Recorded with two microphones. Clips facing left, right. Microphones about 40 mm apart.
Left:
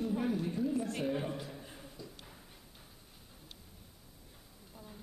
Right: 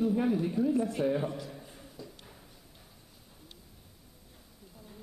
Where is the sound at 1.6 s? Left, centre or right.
Centre.